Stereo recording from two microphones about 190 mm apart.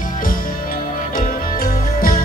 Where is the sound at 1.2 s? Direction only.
45° left (ahead or behind).